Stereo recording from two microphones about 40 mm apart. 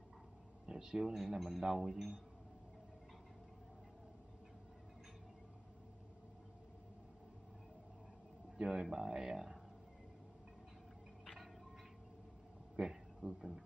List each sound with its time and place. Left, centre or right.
0.7 s a sound: centre
0.9 s speech: centre
8.5 s speech: centre
12.8 s speech: right
13.2 s speech: centre